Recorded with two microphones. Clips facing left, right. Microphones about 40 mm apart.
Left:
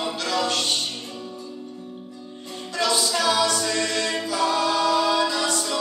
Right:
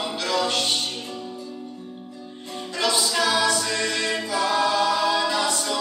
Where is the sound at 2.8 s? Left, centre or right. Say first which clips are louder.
Even; centre.